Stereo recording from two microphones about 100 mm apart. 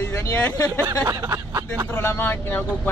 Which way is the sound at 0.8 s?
40° right (ahead or behind).